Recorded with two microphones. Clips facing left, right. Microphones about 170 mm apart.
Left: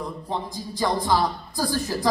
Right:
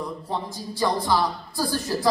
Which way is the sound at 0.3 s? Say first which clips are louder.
Even; 15° left (ahead or behind).